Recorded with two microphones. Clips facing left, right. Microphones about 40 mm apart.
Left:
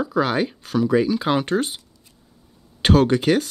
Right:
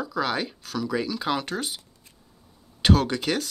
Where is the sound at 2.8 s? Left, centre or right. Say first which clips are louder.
Left 5 dB; left.